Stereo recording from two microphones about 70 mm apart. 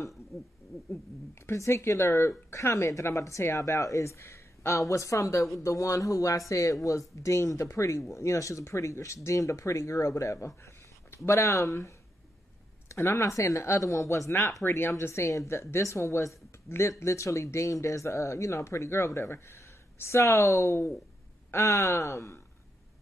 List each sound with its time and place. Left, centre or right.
0.3 s speech: centre
1.4 s speech: left